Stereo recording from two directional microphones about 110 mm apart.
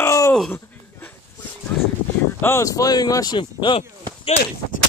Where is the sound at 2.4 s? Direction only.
30° left (ahead or behind); by 4.4 s 55° left (ahead or behind).